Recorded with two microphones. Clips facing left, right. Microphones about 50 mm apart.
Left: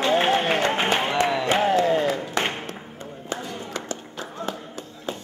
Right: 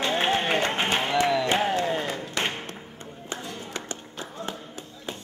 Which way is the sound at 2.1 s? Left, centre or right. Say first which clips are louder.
Left 3 dB; centre.